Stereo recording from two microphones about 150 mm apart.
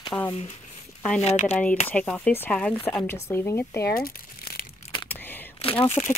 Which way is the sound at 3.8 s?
75° left (ahead or behind).